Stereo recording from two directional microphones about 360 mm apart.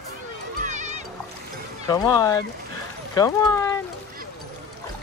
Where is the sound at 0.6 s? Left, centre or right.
Centre.